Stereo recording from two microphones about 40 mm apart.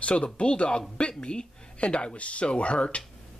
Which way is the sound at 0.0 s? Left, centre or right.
Left.